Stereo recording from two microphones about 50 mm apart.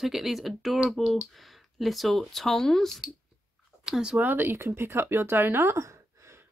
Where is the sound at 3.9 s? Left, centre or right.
Centre.